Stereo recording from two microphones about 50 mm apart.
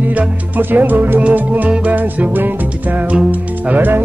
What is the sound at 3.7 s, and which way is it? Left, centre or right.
Music, right.